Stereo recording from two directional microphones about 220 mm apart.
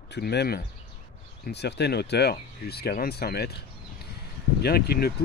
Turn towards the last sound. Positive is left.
turn(degrees=45)  # may be behind; listen again after turning